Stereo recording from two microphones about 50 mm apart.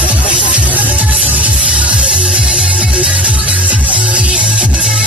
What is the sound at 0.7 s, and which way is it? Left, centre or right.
Music, right.